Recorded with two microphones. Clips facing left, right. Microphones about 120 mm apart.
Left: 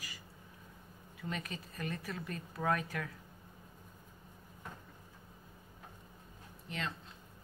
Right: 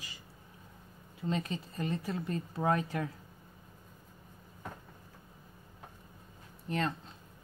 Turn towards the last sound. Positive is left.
turn(degrees=-40)  # may be behind; listen again after turning